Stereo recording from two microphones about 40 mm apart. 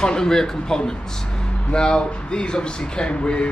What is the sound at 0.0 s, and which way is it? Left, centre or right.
A man's voice, centre.